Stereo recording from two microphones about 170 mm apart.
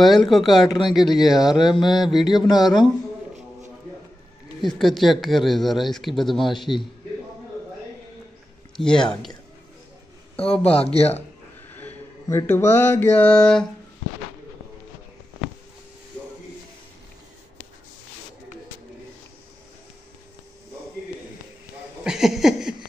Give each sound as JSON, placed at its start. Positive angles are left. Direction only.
{"t": 0.2, "sound": "speech", "side_deg": 0}
{"t": 0.7, "sound": "mantra", "side_deg": 25}
{"t": 1.1, "sound": "speech", "side_deg": 0}
{"t": 1.6, "sound": "mantra", "side_deg": 25}
{"t": 4.6, "sound": "speech", "side_deg": 0}
{"t": 8.7, "sound": "speech", "side_deg": 5}
{"t": 10.3, "sound": "speech", "side_deg": 35}
{"t": 11.7, "sound": "a sound", "side_deg": 10}
{"t": 22.0, "sound": "a sound", "side_deg": -5}